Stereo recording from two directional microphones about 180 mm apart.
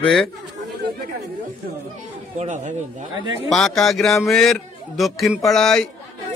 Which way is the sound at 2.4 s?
40° right (ahead or behind).